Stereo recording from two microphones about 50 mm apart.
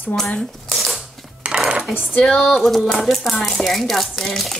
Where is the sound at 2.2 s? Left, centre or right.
Centre.